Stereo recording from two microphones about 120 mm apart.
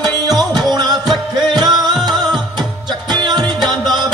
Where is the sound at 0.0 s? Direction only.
35° right (ahead or behind).